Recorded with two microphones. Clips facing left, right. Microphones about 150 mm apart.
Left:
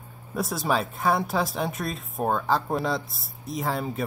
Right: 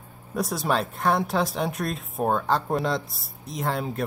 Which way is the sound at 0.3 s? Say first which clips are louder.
Right 1 dB; centre (ahead or behind).